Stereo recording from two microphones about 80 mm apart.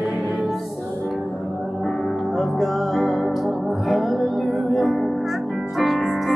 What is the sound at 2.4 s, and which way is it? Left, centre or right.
Music, centre.